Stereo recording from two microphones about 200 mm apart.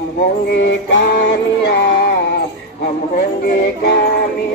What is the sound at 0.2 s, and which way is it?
Music, 55° left (ahead or behind).